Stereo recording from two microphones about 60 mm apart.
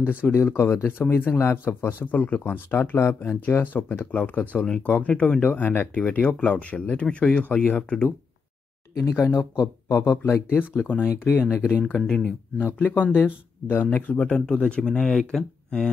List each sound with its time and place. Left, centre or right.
0.0 s speech: left
0.3 s speech: left
2.0 s speech: left
9.2 s speech: left
9.8 s speech: left
11.5 s speech: centre
12.5 s speech: left; by 15.9 s centre